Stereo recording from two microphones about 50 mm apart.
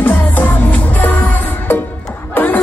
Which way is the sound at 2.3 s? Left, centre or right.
Left.